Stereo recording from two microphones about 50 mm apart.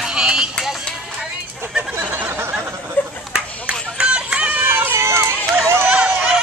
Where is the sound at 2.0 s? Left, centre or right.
Right.